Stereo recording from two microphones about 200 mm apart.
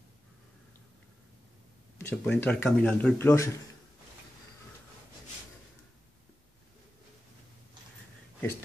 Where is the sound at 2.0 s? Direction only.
10° left (ahead or behind).